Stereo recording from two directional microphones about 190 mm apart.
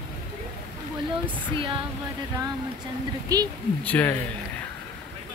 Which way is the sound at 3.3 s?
20° right (ahead or behind).